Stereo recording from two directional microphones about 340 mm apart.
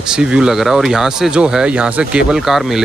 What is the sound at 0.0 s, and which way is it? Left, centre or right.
Speech, centre.